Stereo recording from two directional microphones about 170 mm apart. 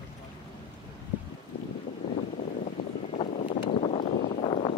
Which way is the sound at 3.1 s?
35° left (ahead or behind).